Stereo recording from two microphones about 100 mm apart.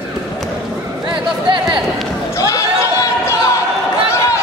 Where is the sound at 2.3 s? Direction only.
35° left (ahead or behind).